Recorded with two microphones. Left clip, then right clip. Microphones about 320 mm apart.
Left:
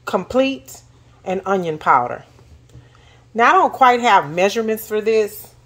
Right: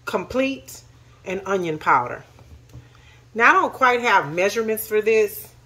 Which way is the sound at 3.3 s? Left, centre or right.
Left.